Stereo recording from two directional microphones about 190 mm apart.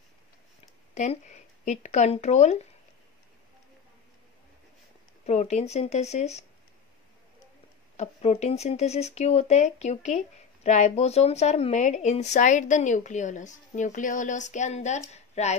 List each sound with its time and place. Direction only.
0.9 s speech: 35° left (ahead or behind)
5.2 s speech: 35° left (ahead or behind)
8.0 s speech: 35° left (ahead or behind)